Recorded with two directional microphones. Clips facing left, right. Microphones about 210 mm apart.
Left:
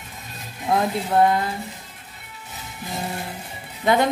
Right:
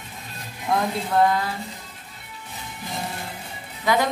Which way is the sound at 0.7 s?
25° left (ahead or behind).